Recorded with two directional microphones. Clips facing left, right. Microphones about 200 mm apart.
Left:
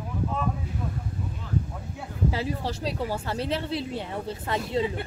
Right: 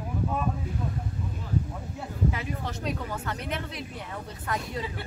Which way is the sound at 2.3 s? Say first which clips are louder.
Left 4 dB; 30° left (ahead or behind).